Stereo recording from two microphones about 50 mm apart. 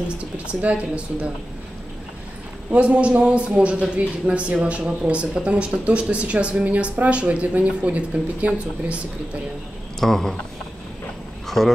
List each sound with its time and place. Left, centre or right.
0.5 s speech: right
2.7 s speech: right
9.9 s speech: centre
11.4 s dog: centre